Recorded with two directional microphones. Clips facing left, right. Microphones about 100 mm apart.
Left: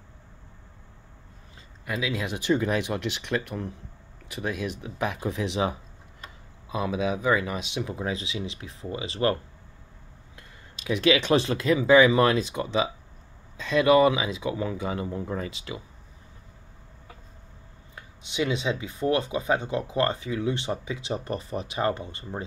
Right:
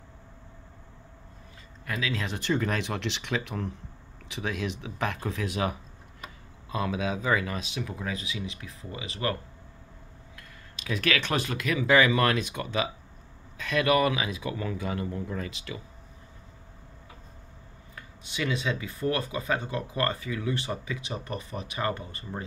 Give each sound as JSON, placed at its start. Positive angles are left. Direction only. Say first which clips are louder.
{"t": 1.9, "sound": "speech", "louder": "left 2 dB", "side_deg": 15}
{"t": 17.9, "sound": "speech", "louder": "left 6 dB", "side_deg": 20}